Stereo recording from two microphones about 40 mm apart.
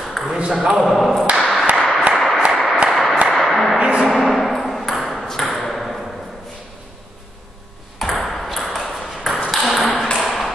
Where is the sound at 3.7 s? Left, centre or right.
Right.